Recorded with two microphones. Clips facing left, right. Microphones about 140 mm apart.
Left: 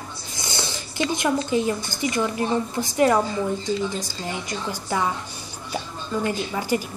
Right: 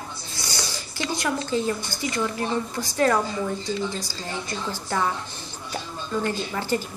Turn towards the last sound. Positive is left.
turn(degrees=10)  # may be behind; listen again after turning